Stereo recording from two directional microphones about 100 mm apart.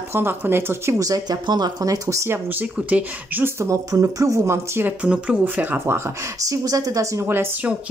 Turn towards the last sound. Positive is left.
turn(degrees=-25)  # may be behind; listen again after turning